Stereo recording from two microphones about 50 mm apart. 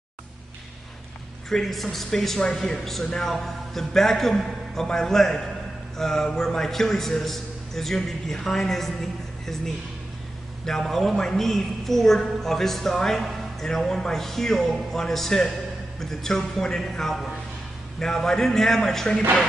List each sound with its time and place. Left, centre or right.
1.5 s a man's voice: centre
10.6 s a man's voice: centre